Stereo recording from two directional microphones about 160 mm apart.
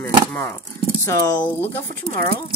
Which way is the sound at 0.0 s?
15° left (ahead or behind).